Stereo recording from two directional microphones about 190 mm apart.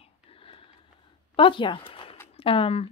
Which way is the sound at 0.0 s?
30° left (ahead or behind).